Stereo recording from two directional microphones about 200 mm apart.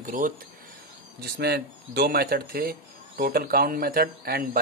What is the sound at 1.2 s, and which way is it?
Speech, 55° right (ahead or behind).